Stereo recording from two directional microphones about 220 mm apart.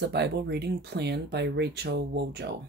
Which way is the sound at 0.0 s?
50° right (ahead or behind).